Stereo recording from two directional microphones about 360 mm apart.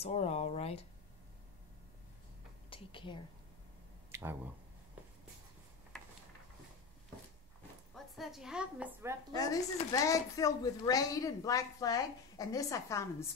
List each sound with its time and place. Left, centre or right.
0.0 s speech: centre
2.7 s a woman's voice: centre
4.1 s a sound: centre
7.9 s a woman's voice: centre
9.3 s speech: centre